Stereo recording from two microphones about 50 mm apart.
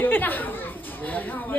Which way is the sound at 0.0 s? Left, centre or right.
Left.